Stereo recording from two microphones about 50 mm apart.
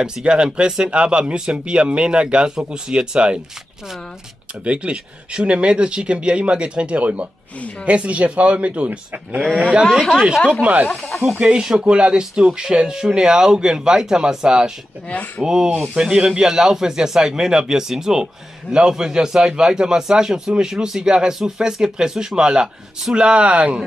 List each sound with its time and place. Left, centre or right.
0.0 s speech: centre
4.6 s speech: right
9.4 s speech: centre
15.0 s speech: left
15.4 s speech: centre